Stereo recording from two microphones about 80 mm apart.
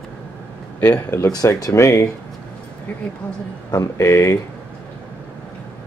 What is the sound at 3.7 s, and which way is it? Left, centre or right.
Speech, left.